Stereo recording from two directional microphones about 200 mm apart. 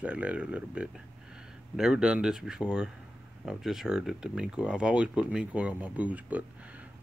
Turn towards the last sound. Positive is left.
turn(degrees=-5)  # may be behind; listen again after turning